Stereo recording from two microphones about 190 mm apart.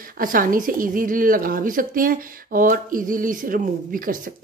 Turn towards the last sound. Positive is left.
turn(degrees=-45)  # may be behind; listen again after turning